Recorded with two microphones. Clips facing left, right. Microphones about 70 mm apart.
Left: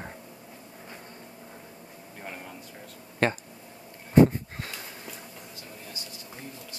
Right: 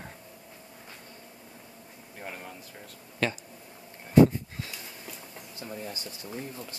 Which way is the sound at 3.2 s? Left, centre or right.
Left.